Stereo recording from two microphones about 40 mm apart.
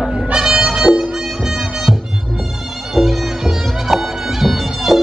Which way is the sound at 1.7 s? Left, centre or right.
Centre.